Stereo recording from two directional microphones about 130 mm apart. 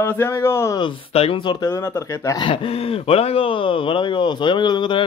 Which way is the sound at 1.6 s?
20° left (ahead or behind).